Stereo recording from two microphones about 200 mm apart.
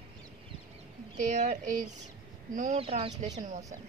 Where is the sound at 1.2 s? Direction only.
35° right (ahead or behind).